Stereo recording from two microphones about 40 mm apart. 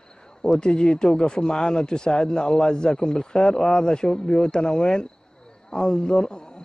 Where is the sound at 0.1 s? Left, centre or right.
Centre.